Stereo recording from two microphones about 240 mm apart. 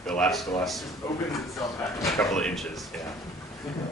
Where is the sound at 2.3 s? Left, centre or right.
Centre.